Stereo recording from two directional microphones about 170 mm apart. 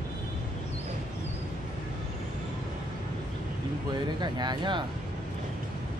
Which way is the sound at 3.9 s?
25° right (ahead or behind).